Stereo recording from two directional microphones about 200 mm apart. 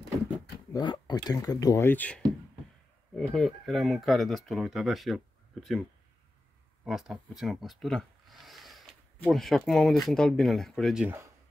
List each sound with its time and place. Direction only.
0.7 s speech: 20° left (ahead or behind); by 5.8 s centre (ahead or behind)
6.8 s a sound: centre (ahead or behind)
9.7 s speech: centre (ahead or behind)